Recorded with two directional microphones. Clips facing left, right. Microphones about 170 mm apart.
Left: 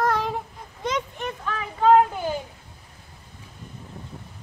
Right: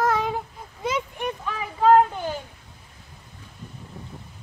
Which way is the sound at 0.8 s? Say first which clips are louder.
Right 1 dB; 10° right (ahead or behind).